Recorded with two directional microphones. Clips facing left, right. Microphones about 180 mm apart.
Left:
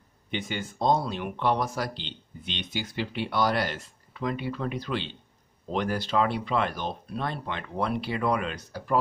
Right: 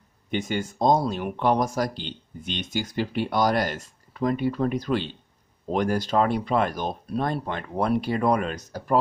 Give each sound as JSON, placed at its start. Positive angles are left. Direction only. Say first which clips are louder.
{"t": 0.3, "sound": "speech", "louder": "right 6 dB", "side_deg": -45}